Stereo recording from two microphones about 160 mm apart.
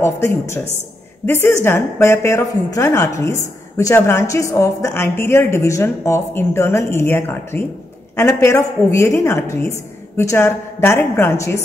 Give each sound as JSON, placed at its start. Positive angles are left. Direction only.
{"t": 0.0, "sound": "a woman's voice", "side_deg": 15}